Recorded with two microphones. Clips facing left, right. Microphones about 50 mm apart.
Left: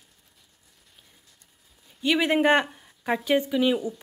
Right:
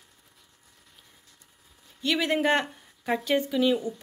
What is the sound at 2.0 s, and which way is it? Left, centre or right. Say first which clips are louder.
Speech: left 3 dB; centre.